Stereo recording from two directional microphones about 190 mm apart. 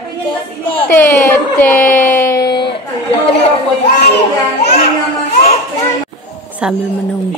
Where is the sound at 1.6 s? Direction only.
10° left (ahead or behind).